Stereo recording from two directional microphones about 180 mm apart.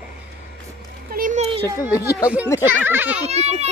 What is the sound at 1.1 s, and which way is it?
Speech, 45° right (ahead or behind).